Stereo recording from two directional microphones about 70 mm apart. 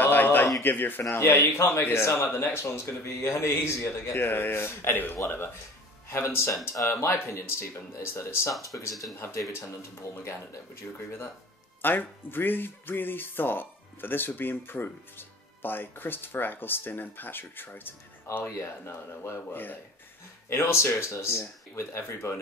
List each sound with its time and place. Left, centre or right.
0.0 s a sound: left
0.6 s speech: left
1.0 s speech: left
8.6 s speech: left
9.5 s speech: left
11.8 s speech: left